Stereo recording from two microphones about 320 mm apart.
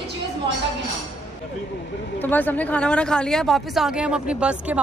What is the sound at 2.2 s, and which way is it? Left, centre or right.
Speech, centre.